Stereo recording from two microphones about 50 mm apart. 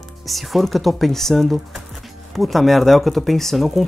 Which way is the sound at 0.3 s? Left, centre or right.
Centre.